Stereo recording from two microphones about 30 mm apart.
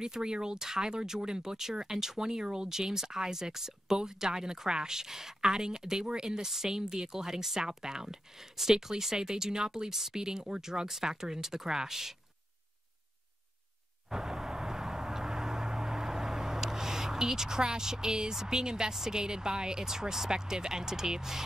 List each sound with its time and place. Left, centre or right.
0.0 s speech: right
6.4 s speech: centre
14.0 s vehicle: centre
18.9 s speech: right